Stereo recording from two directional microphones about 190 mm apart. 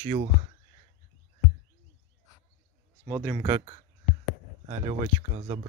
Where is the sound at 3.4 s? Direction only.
30° right (ahead or behind).